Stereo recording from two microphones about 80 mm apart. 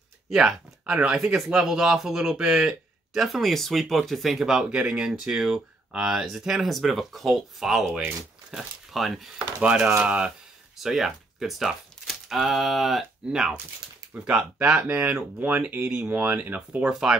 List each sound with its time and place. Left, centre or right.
0.3 s speech: centre
9.6 s speech: centre
10.8 s speech: centre